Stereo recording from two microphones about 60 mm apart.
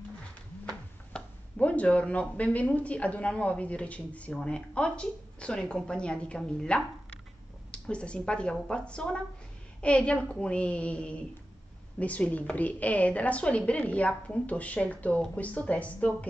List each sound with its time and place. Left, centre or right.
1.1 s a woman's voice: left